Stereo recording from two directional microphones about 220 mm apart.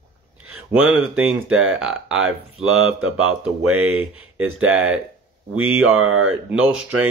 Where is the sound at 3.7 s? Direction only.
75° right (ahead or behind).